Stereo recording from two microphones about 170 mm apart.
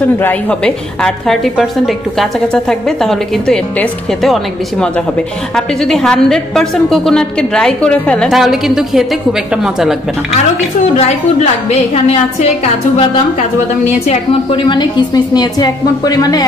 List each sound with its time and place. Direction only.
0.2 s a woman's voice: 10° left (ahead or behind)
11.0 s a woman's voice: 40° left (ahead or behind); by 16.4 s 20° left (ahead or behind)